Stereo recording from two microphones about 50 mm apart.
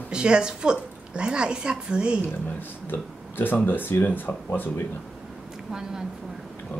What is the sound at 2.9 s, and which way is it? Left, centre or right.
Speech, left.